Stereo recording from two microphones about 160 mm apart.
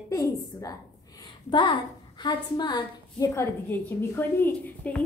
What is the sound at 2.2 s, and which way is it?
A woman's voice, 30° left (ahead or behind).